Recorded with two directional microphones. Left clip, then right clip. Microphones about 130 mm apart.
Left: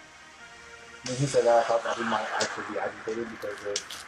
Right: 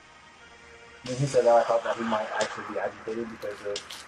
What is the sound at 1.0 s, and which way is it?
Speech, 30° left (ahead or behind).